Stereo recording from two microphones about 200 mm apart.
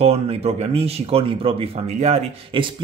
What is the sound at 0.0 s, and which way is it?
Speech, 30° right (ahead or behind).